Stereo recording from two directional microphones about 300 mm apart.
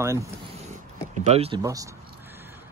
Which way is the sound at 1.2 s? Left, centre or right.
Right.